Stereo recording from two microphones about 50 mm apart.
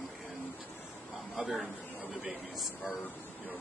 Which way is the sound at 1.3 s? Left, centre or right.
Centre.